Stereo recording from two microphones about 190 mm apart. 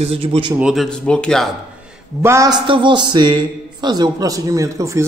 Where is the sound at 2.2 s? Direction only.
15° right (ahead or behind).